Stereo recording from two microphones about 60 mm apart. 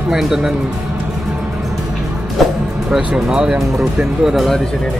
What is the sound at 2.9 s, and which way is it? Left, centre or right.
Speech, centre.